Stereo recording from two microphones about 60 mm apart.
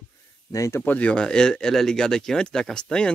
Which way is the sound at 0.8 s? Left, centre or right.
Left.